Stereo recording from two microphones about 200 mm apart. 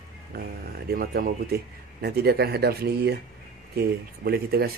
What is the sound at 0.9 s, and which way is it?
Speech, 50° right (ahead or behind).